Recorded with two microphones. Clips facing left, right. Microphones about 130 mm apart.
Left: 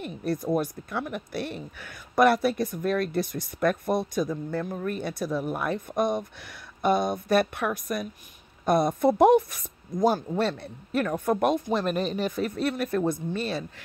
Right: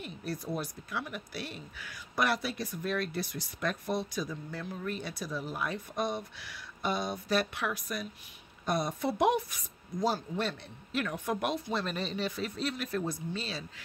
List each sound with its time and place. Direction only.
0.0 s speech: 55° left (ahead or behind)